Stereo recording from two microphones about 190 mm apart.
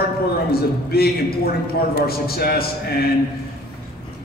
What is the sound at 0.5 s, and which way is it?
A man's voice, 55° left (ahead or behind).